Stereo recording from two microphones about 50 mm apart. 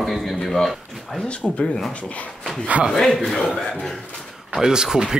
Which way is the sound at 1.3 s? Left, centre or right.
Left.